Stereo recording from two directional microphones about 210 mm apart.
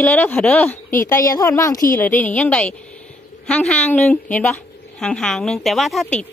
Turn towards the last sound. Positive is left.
turn(degrees=0)  # may be behind; listen again after turning